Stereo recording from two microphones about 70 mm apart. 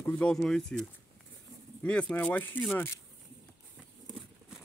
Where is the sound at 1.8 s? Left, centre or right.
Centre.